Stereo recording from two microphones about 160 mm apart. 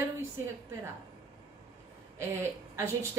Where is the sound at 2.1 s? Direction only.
15° right (ahead or behind).